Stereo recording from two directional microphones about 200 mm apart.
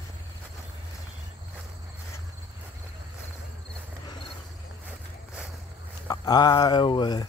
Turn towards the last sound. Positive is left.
turn(degrees=20)  # may be behind; listen again after turning